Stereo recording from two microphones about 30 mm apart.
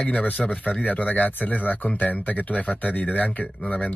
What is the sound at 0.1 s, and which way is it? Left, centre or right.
Speech, left.